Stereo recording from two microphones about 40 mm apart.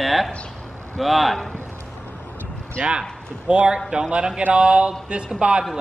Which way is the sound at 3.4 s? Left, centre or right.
Right.